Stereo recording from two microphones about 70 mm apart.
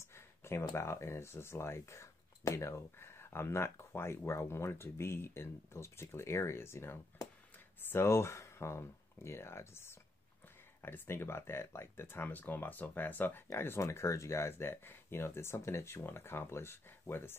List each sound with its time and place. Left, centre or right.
0.4 s speech: left
13.8 s speech: left